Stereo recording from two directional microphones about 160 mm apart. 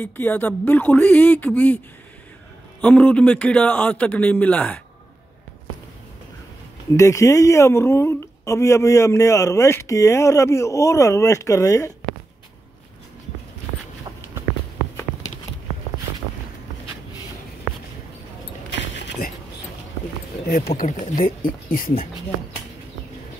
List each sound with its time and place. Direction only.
0.0 s a man's voice: 10° left (ahead or behind)
2.8 s a man's voice: 10° left (ahead or behind)
6.9 s a woman's voice: 20° left (ahead or behind)
18.9 s a sound: 80° left
20.4 s speech: 70° left (ahead or behind)